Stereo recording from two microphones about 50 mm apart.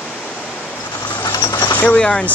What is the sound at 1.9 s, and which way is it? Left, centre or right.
Speech, centre.